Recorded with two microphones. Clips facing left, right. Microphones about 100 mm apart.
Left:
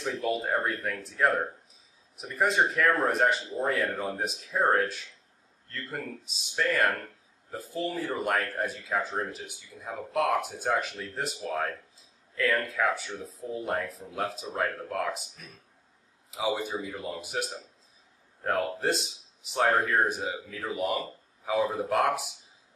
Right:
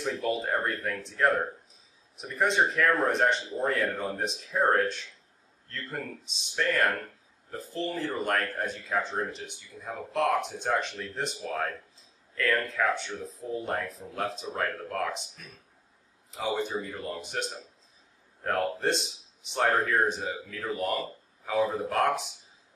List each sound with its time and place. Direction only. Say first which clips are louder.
0.0 s speech: even; 5° left (ahead or behind)
16.3 s speech: left 1 dB; 5° left (ahead or behind)